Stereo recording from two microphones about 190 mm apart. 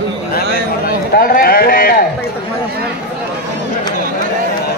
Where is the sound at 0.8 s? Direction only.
50° left (ahead or behind).